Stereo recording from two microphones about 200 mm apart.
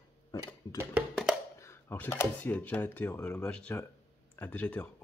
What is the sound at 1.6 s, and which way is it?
Speech, 10° left (ahead or behind).